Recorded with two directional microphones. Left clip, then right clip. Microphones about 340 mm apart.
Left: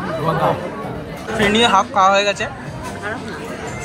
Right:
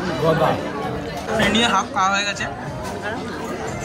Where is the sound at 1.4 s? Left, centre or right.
Centre.